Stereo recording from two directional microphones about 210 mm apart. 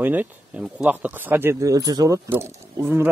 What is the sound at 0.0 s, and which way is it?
Speech, 10° right (ahead or behind).